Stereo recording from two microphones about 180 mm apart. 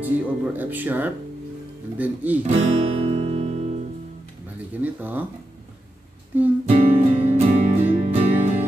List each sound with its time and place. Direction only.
0.0 s speech: 10° right (ahead or behind)
2.4 s guitar: 40° right (ahead or behind)
4.8 s speech: 10° right (ahead or behind)
6.6 s music: 35° right (ahead or behind)